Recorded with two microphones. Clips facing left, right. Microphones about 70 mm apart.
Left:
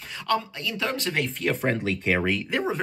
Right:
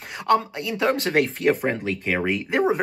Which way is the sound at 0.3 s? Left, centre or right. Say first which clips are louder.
Right 6 dB; right.